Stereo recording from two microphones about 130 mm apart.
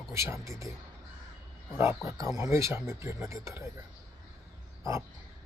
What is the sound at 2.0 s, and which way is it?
Speech, 25° right (ahead or behind).